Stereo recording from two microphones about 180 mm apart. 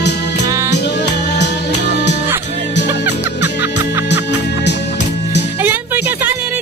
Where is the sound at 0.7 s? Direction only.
70° left (ahead or behind).